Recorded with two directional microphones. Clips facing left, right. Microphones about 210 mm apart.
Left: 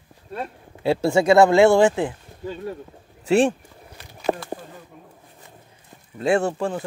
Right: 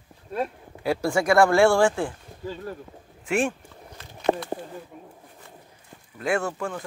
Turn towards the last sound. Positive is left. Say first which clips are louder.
# left 5 dB
turn(degrees=30)  # may be behind; listen again after turning